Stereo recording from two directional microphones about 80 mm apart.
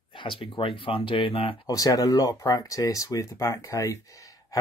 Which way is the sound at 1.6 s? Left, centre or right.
Left.